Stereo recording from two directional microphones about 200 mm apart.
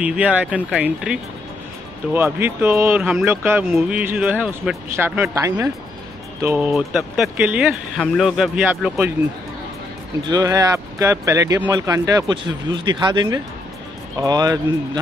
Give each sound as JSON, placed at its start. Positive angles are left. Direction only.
{"t": 0.0, "sound": "speech", "side_deg": -5}
{"t": 3.0, "sound": "speech", "side_deg": 0}
{"t": 3.3, "sound": "speech", "side_deg": -10}
{"t": 3.6, "sound": "speech", "side_deg": 0}
{"t": 10.2, "sound": "speech", "side_deg": -20}